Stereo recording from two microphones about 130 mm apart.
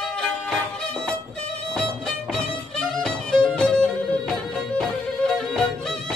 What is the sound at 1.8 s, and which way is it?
Music, 5° left (ahead or behind).